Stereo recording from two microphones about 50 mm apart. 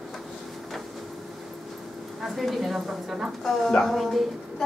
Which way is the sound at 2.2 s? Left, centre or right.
Centre.